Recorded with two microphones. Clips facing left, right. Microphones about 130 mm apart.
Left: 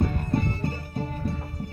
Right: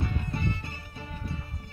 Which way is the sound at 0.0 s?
40° left (ahead or behind).